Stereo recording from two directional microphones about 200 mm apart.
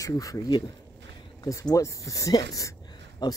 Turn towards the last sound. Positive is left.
turn(degrees=20)  # may be behind; listen again after turning